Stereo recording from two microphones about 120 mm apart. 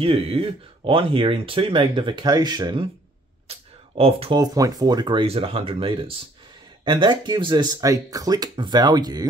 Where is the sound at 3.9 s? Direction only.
55° right (ahead or behind).